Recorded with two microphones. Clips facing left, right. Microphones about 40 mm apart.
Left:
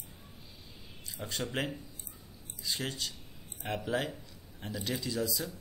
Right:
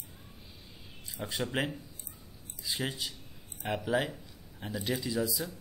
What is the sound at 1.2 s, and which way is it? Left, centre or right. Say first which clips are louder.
A man's voice: right 2 dB; centre.